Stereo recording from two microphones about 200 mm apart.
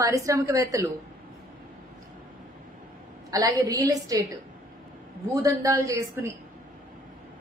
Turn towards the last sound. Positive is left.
turn(degrees=-15)  # may be behind; listen again after turning